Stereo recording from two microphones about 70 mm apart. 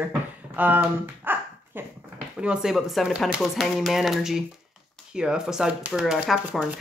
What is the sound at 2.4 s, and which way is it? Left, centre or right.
Speech, centre.